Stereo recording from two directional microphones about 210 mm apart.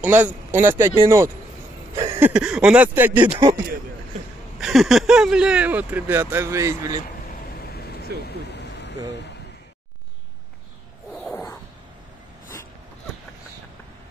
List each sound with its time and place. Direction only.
0.0 s speech: 5° right (ahead or behind)
4.6 s speech: centre (ahead or behind)
8.2 s vehicle: 50° left (ahead or behind)